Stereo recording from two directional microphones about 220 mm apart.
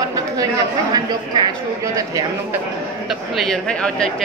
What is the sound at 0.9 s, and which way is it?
Speech, 20° right (ahead or behind).